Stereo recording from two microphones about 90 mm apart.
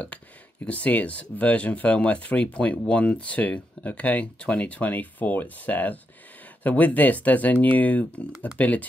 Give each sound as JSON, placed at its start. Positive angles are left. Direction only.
{"t": 0.7, "sound": "speech", "side_deg": 15}